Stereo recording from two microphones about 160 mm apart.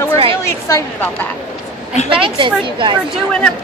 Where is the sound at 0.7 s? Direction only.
20° left (ahead or behind).